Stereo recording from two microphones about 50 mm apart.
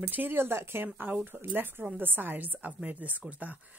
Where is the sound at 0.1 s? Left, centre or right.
Right.